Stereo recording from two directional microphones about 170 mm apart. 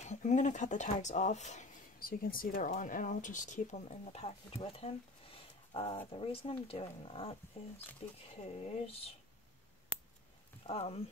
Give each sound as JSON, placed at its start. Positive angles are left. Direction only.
{"t": 0.0, "sound": "speech", "side_deg": 45}
{"t": 2.0, "sound": "speech", "side_deg": 60}
{"t": 10.7, "sound": "speech", "side_deg": 35}